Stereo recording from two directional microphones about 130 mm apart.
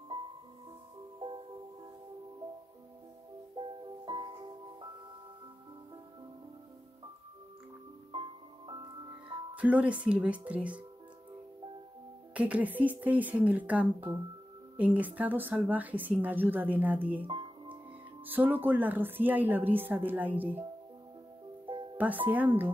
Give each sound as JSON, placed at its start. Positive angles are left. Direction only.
{"t": 3.5, "sound": "music", "side_deg": -40}
{"t": 8.1, "sound": "music", "side_deg": -40}
{"t": 9.6, "sound": "a woman's voice", "side_deg": -10}
{"t": 12.4, "sound": "a woman's voice", "side_deg": -10}
{"t": 17.2, "sound": "music", "side_deg": -40}
{"t": 18.2, "sound": "a woman's voice", "side_deg": -15}
{"t": 21.9, "sound": "a woman's voice", "side_deg": -10}